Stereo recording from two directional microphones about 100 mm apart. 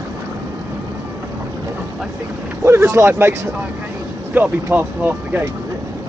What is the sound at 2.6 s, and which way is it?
Speech, 25° right (ahead or behind).